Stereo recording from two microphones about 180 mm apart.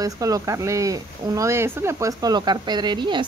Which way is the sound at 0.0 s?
20° right (ahead or behind).